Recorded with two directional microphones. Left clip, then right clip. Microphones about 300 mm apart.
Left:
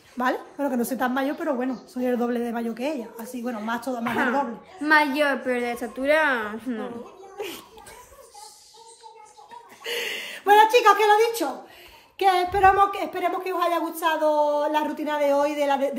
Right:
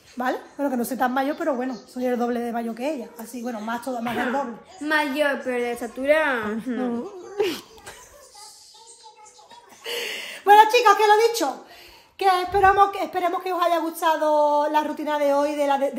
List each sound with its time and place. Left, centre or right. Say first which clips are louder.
0.2 s a woman's voice: even; centre
7.3 s a child's voice: right 10 dB; right
9.8 s a sound: even; centre
12.2 s a woman's voice: even; centre